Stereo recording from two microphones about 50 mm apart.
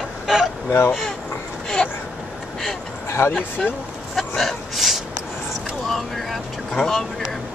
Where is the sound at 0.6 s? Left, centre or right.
Left.